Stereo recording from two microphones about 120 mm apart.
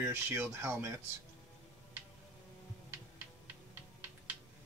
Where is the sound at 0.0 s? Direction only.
20° right (ahead or behind).